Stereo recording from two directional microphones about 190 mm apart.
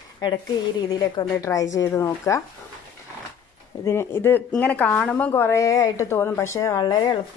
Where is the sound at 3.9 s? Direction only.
15° left (ahead or behind).